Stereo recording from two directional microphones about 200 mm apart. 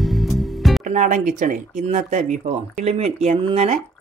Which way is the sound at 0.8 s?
40° right (ahead or behind).